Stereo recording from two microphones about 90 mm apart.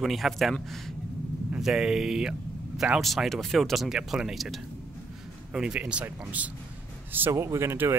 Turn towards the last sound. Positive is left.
turn(degrees=-30)  # may be behind; listen again after turning